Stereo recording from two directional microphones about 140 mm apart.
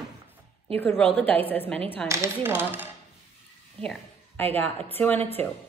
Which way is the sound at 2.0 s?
20° right (ahead or behind).